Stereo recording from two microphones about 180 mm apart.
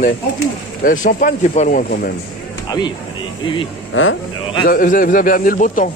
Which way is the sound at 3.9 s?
90° left.